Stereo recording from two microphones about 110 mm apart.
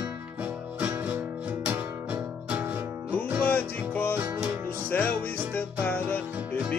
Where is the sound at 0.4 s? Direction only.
15° right (ahead or behind).